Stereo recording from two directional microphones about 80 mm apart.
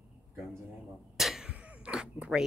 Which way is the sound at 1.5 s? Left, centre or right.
Centre.